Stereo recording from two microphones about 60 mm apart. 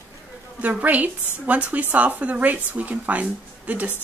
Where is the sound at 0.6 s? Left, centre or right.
Right.